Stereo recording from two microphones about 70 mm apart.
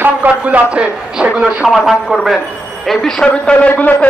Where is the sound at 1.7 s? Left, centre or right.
Centre.